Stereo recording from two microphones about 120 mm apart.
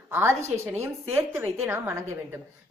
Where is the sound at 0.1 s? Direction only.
20° right (ahead or behind).